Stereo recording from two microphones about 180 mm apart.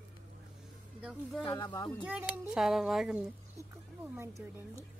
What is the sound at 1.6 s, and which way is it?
Speech, 25° left (ahead or behind).